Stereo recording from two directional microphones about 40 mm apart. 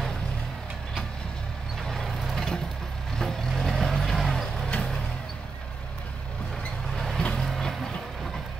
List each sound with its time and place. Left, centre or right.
2.3 s vehicle: centre
4.2 s music: centre
4.6 s vehicle: left
7.0 s vehicle: centre